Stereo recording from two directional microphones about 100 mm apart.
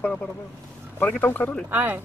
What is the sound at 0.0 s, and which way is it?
Speech, 10° left (ahead or behind).